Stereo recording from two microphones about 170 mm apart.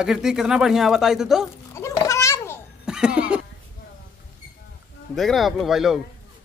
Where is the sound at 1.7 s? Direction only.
20° left (ahead or behind).